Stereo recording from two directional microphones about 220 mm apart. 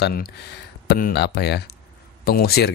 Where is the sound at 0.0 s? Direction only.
45° left (ahead or behind).